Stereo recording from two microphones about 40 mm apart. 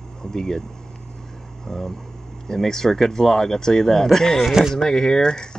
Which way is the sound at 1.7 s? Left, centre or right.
Centre.